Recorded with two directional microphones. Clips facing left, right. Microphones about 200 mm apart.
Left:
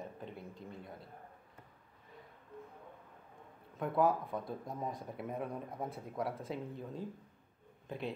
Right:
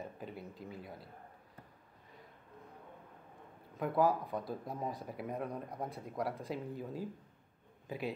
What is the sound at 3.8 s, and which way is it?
Speech, centre (ahead or behind).